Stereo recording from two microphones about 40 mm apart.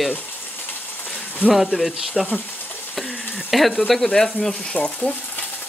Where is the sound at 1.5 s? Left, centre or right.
Centre.